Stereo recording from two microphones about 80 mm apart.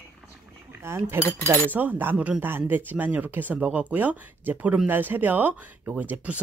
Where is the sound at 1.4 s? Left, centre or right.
Right.